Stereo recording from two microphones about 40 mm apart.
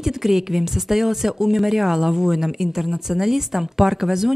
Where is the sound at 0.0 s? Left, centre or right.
Centre.